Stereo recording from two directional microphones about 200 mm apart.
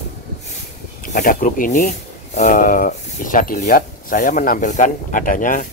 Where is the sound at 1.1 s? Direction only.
45° left (ahead or behind).